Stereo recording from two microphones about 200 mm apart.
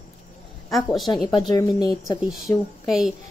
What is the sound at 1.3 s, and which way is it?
Speech, 20° left (ahead or behind).